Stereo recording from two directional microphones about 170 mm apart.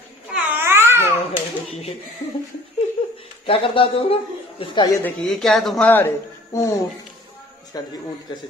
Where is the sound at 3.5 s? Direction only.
30° left (ahead or behind).